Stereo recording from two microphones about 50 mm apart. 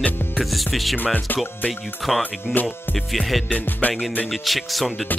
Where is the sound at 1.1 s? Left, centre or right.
Left.